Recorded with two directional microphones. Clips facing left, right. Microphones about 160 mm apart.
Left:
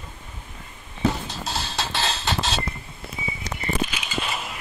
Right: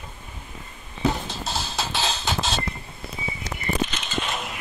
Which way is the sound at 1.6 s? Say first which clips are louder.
Even; 5° right (ahead or behind).